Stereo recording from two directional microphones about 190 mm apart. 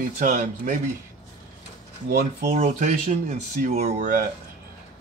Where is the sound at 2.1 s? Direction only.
55° right (ahead or behind).